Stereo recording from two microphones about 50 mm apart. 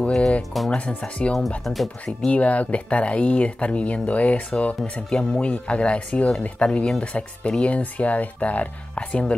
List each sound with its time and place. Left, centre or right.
0.4 s speech: centre
0.7 s speech: left
1.6 s speech: centre
2.2 s speech: left